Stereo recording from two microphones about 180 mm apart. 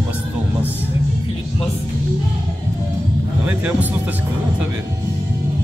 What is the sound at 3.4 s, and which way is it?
Speech, 10° right (ahead or behind).